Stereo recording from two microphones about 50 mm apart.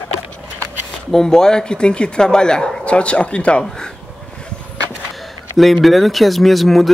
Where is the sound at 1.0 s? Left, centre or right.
Centre.